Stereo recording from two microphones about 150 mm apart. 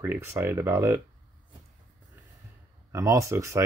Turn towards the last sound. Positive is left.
turn(degrees=-20)  # may be behind; listen again after turning